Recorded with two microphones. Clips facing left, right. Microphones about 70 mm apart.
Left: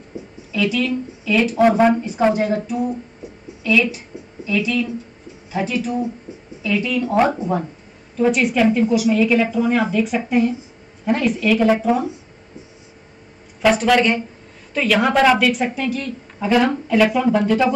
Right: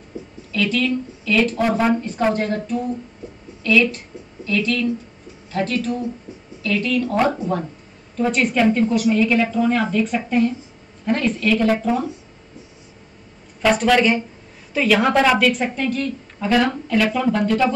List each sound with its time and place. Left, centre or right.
0.1 s a sound: left
0.5 s speech: centre
13.6 s speech: centre